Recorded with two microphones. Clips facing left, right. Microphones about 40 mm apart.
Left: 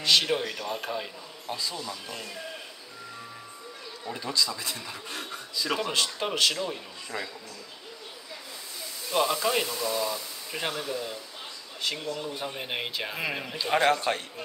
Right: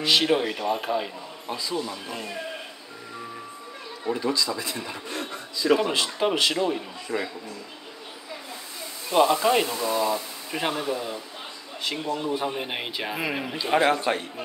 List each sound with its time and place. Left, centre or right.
0.0 s speech: centre
4.1 s speech: centre
9.1 s speech: centre